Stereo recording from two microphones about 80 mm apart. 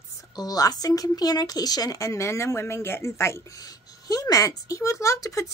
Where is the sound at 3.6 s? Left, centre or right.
Left.